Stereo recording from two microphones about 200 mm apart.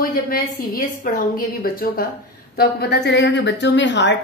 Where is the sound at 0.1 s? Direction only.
45° left (ahead or behind).